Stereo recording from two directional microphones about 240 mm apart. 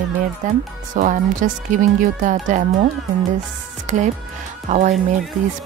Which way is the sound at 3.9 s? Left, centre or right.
Right.